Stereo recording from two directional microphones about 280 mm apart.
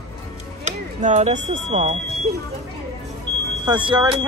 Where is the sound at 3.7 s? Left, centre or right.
Centre.